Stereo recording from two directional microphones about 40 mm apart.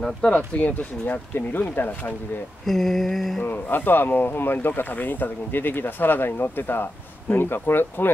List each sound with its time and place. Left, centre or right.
0.2 s speech: left
2.6 s a sound: centre
3.4 s speech: left